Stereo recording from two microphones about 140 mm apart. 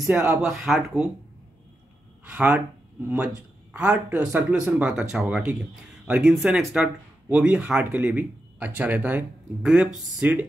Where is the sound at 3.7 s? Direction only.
10° right (ahead or behind).